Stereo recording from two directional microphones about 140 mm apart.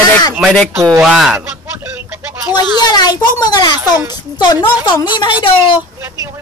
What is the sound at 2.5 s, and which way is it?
Speech, 30° left (ahead or behind).